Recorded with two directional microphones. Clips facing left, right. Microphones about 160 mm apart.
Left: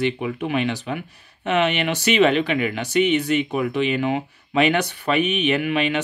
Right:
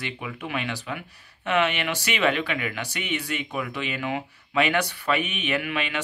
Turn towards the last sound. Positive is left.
turn(degrees=20)  # may be behind; listen again after turning